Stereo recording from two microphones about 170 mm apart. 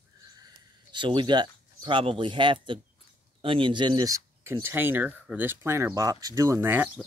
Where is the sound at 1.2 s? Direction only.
25° right (ahead or behind).